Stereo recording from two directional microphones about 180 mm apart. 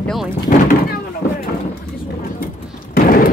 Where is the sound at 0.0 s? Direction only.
Centre (ahead or behind).